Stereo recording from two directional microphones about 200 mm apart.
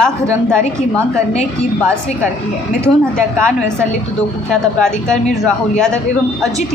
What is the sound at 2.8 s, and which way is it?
Speech, 5° left (ahead or behind).